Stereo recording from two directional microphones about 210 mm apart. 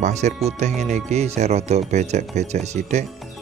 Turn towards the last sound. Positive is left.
turn(degrees=-35)  # may be behind; listen again after turning